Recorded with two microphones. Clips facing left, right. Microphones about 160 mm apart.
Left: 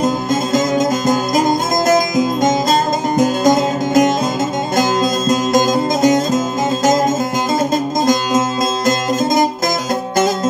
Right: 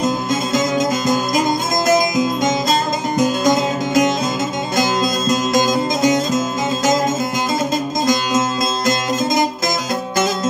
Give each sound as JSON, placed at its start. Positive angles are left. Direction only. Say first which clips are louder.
{"t": 0.0, "sound": "music", "louder": "left 2 dB", "side_deg": 50}
{"t": 8.1, "sound": "music", "louder": "left 1 dB", "side_deg": 50}